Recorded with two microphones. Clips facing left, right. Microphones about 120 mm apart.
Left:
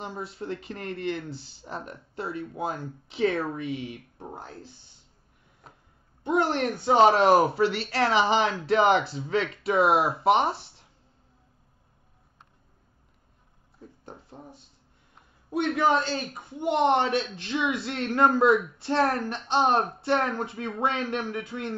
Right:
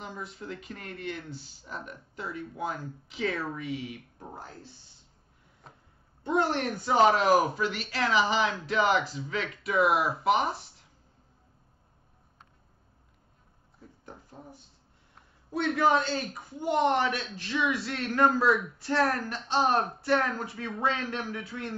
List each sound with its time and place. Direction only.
0.0 s speech: 30° left (ahead or behind)
6.2 s a woman's voice: 20° left (ahead or behind)
14.0 s a sound: 25° left (ahead or behind)
15.5 s a man's voice: 20° left (ahead or behind)